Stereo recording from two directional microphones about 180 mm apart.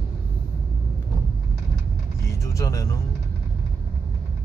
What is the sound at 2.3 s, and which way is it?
Music, 15° left (ahead or behind).